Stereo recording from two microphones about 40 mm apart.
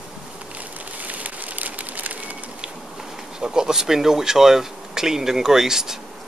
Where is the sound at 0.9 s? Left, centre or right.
Right.